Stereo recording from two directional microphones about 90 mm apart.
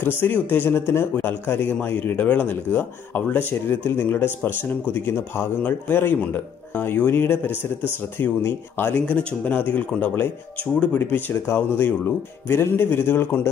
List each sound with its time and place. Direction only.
0.0 s speech: 25° left (ahead or behind)